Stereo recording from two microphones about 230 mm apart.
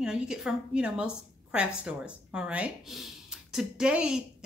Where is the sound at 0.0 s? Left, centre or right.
Centre.